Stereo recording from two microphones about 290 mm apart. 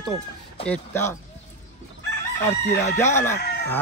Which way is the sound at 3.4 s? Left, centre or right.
Left.